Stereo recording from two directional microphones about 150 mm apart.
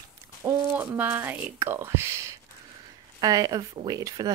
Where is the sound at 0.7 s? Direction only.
10° right (ahead or behind).